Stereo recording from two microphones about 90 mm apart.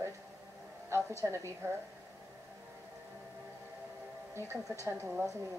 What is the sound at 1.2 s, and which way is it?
Speech, 35° right (ahead or behind).